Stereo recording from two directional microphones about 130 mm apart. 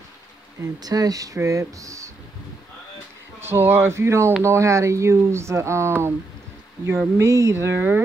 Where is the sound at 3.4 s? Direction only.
15° right (ahead or behind).